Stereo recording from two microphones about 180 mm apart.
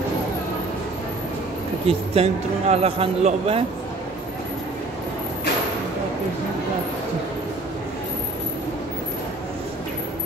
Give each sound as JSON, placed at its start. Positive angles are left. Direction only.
{"t": 1.9, "sound": "speech", "side_deg": -35}